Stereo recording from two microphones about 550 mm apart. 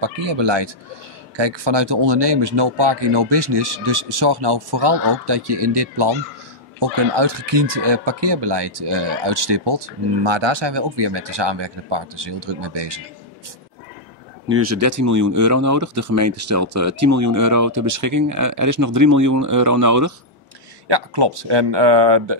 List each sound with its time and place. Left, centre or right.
0.0 s speech: right
14.5 s speech: right
20.9 s speech: right